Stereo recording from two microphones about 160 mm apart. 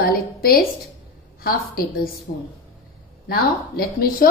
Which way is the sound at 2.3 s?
50° left (ahead or behind).